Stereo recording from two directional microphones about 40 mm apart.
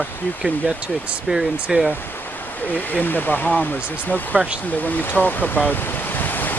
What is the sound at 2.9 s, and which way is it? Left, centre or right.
Speech, left.